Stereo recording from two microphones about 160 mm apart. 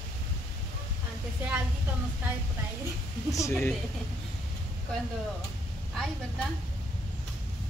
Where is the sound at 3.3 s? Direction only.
20° left (ahead or behind).